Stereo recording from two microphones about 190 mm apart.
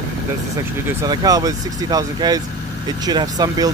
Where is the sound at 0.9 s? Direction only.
20° right (ahead or behind).